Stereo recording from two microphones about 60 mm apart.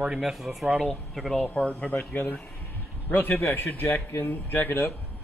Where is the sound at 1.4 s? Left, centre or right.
Left.